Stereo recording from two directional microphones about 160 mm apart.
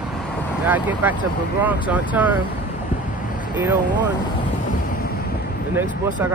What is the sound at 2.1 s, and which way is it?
Speech, 10° right (ahead or behind).